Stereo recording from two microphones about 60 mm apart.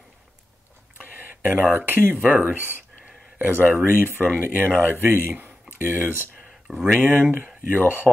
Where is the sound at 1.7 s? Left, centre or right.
Right.